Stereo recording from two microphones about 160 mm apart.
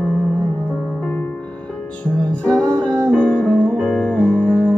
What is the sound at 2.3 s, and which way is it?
Music, 5° left (ahead or behind).